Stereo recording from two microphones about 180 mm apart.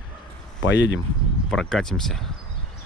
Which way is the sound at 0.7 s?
90° left.